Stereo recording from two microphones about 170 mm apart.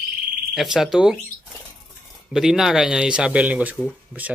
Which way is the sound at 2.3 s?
5° right (ahead or behind).